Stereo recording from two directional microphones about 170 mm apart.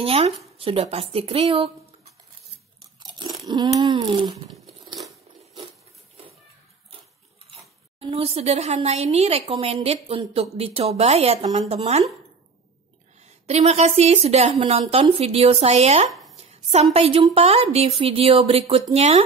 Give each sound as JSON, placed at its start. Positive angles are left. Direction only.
{"t": 0.0, "sound": "speech", "side_deg": -35}
{"t": 3.0, "sound": "crunch", "side_deg": -25}
{"t": 4.5, "sound": "a sound", "side_deg": 0}
{"t": 7.5, "sound": "speech", "side_deg": -35}
{"t": 13.2, "sound": "a woman's voice", "side_deg": -40}
{"t": 16.1, "sound": "a sound", "side_deg": 0}
{"t": 16.7, "sound": "speech", "side_deg": -35}